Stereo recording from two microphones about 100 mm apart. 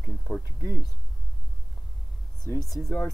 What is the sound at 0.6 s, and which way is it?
Speech, 35° left (ahead or behind).